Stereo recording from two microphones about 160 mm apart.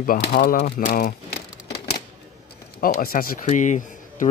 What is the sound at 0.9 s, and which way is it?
Speech, 60° left (ahead or behind).